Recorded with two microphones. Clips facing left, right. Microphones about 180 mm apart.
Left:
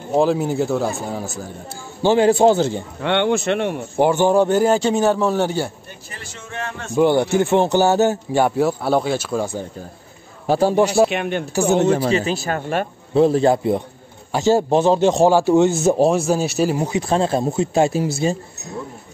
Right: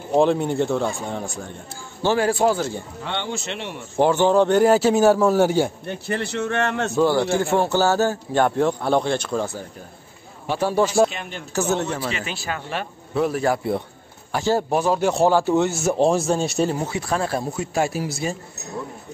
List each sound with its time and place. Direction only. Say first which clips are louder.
0.1 s a man's voice: left 1 dB; 5° left (ahead or behind)
2.0 s speech: left 5 dB; 20° left (ahead or behind)
3.0 s speech: left 13 dB; 65° left (ahead or behind)
4.0 s a man's voice: left 1 dB; 10° left (ahead or behind); by 5.7 s 10° right (ahead or behind)
5.9 s a man's voice: right 12 dB; 65° right (ahead or behind)
7.0 s speech: left 4 dB; 20° left (ahead or behind)
8.4 s speech: left 1 dB; 10° left (ahead or behind)
10.4 s a man's voice: left 6 dB; 40° left (ahead or behind)
11.1 s speech: left 11 dB; 65° left (ahead or behind)
11.7 s speech: left 10 dB; 25° left (ahead or behind)
12.0 s speech: left 9 dB; 35° left (ahead or behind)
13.1 s speech: left 6 dB; 25° left (ahead or behind)
16.3 s a man's voice: left 2 dB; 5° left (ahead or behind)
16.9 s speech: left 5 dB; 25° left (ahead or behind)